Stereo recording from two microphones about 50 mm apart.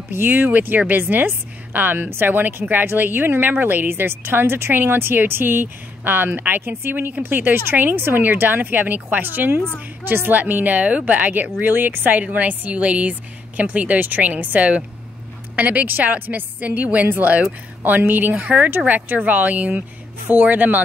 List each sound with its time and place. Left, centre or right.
0.1 s a woman's voice: right